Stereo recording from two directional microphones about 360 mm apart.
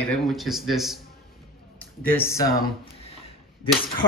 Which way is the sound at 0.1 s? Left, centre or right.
Centre.